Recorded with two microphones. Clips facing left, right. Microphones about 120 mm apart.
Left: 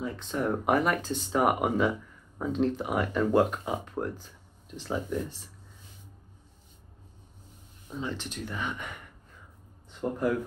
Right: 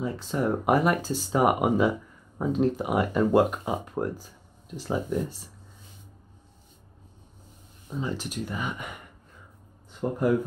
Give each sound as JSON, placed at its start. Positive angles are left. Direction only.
{"t": 0.0, "sound": "speech", "side_deg": -5}
{"t": 7.9, "sound": "speech", "side_deg": -5}
{"t": 10.0, "sound": "speech", "side_deg": -25}